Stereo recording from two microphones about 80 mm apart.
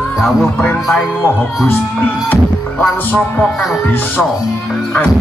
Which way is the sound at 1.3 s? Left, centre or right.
Left.